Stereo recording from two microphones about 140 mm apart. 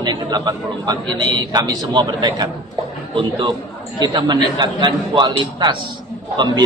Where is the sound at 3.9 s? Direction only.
30° right (ahead or behind).